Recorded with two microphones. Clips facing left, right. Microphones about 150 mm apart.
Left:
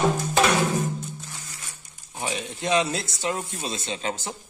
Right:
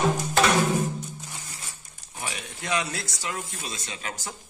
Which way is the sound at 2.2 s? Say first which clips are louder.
Left 6 dB; 25° left (ahead or behind).